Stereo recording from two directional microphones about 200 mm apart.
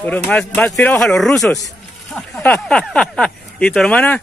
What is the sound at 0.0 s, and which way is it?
Speech, 5° left (ahead or behind).